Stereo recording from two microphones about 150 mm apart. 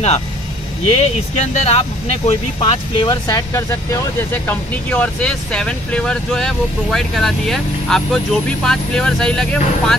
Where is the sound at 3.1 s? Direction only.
25° left (ahead or behind).